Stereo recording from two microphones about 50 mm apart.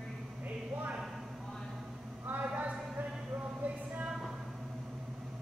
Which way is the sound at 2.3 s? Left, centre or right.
Right.